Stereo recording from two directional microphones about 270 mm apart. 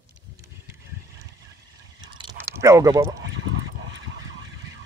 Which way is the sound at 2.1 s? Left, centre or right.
Centre.